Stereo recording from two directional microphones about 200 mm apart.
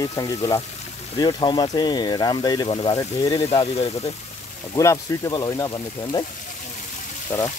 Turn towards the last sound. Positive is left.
turn(degrees=15)  # may be behind; listen again after turning